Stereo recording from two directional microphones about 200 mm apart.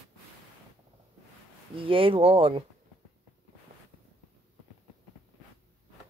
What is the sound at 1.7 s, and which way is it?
Speech, 25° right (ahead or behind).